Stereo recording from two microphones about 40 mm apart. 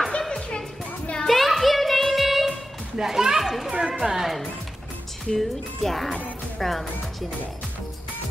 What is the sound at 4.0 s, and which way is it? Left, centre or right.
Music, centre.